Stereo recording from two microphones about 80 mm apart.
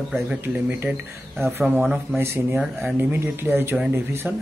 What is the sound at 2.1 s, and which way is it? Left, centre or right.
Speech, right.